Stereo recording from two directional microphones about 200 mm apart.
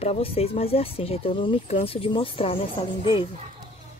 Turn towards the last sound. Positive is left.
turn(degrees=25)  # may be behind; listen again after turning